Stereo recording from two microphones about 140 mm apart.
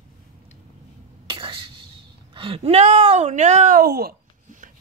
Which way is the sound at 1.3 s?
35° right (ahead or behind).